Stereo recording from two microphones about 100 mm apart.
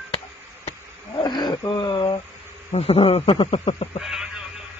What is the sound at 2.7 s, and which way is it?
Speech, 90° left.